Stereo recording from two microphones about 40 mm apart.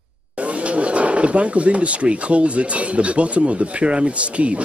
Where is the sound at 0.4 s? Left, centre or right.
Right.